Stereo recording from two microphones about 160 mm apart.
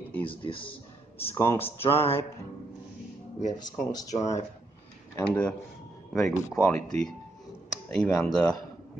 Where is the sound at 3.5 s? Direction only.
25° left (ahead or behind).